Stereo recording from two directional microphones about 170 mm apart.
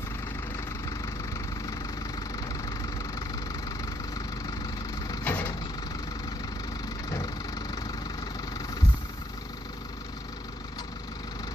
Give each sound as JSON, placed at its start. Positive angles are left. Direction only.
{"t": 5.0, "sound": "vehicle", "side_deg": 20}
{"t": 7.1, "sound": "engine", "side_deg": 20}